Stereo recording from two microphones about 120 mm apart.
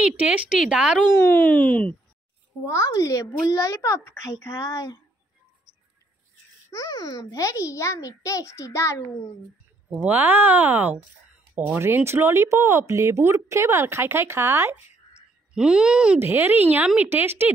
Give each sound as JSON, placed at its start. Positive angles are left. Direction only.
{"t": 0.0, "sound": "speech", "side_deg": -10}
{"t": 1.1, "sound": "speech", "side_deg": 15}
{"t": 2.6, "sound": "a child's voice", "side_deg": 25}
{"t": 6.7, "sound": "a child's voice", "side_deg": 30}
{"t": 9.9, "sound": "speech", "side_deg": -15}
{"t": 15.5, "sound": "speech", "side_deg": -5}
{"t": 16.2, "sound": "speech", "side_deg": -20}